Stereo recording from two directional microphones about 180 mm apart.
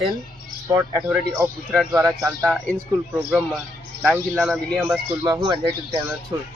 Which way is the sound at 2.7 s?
Centre (ahead or behind).